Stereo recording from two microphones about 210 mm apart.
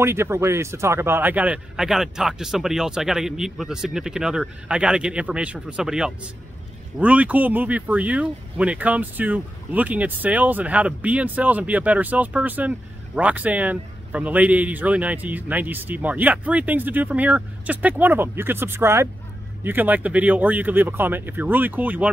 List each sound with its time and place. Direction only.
0.0 s speech: 10° right (ahead or behind)